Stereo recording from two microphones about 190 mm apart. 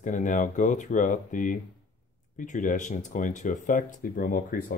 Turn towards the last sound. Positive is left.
turn(degrees=50)  # may be behind; listen again after turning